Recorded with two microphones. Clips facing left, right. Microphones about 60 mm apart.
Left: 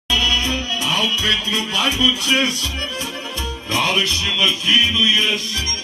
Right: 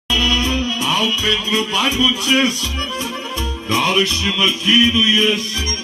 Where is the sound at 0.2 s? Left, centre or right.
Right.